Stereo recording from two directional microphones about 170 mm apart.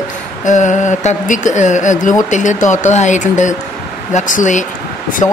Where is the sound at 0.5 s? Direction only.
45° left (ahead or behind).